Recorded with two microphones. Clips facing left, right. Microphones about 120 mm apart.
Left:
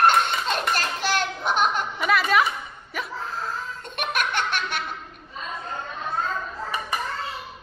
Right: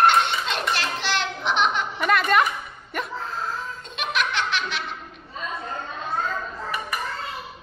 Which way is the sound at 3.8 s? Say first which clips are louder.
Even; 55° left (ahead or behind).